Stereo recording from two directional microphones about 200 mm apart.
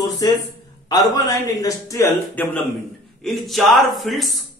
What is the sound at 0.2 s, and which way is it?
A man's voice, 20° left (ahead or behind).